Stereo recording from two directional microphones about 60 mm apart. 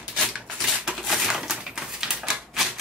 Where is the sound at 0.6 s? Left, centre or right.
Centre.